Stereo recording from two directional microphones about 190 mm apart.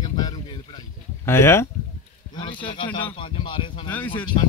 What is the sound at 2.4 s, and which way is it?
A man's voice, 25° left (ahead or behind).